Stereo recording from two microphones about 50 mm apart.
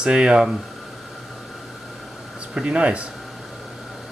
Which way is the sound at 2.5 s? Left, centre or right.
Centre.